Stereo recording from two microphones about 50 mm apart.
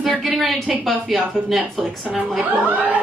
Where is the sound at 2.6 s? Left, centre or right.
Right.